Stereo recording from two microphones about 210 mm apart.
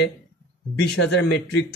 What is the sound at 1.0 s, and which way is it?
Speech, 75° left (ahead or behind).